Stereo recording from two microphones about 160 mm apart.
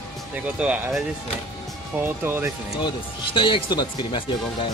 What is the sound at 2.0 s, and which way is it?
Speech, 15° right (ahead or behind).